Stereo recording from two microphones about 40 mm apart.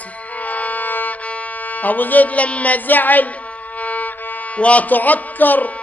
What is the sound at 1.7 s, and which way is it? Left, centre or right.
A woman's voice, left.